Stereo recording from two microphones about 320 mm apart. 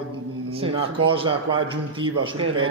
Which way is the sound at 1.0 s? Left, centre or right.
Centre.